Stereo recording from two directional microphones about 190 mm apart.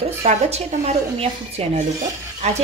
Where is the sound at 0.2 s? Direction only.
35° right (ahead or behind).